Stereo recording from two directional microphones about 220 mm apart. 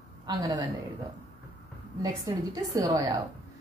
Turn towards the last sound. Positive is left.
turn(degrees=-15)  # may be behind; listen again after turning